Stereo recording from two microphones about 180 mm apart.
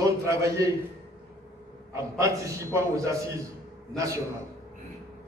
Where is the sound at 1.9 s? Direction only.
15° right (ahead or behind).